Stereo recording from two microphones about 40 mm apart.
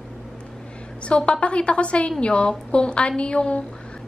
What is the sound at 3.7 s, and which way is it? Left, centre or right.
Music, left.